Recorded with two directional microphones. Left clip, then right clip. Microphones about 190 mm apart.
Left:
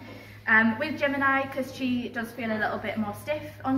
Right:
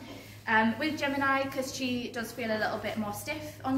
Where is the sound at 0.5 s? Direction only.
20° right (ahead or behind).